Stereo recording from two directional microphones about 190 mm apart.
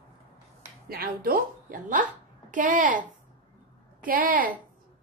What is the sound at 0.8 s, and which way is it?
A woman's voice, 50° right (ahead or behind).